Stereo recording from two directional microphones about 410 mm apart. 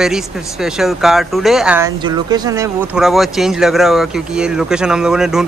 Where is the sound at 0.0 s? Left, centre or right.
Centre.